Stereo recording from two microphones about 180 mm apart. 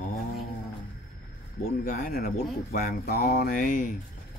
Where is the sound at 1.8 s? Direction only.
55° left (ahead or behind).